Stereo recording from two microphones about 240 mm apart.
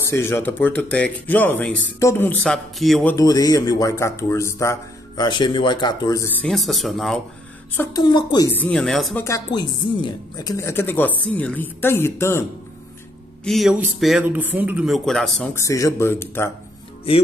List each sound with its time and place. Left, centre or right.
0.0 s speech: centre
6.4 s speech: centre
7.7 s speech: centre
8.5 s speech: centre
9.2 s speech: centre
13.4 s speech: centre
15.5 s speech: centre